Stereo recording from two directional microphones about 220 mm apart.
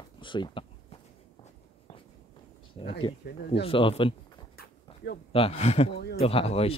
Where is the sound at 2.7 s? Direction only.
25° left (ahead or behind).